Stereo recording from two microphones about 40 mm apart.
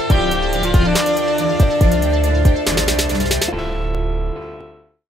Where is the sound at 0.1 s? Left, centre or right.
Centre.